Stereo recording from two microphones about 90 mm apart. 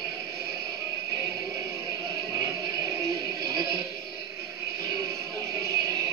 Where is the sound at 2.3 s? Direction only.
40° right (ahead or behind).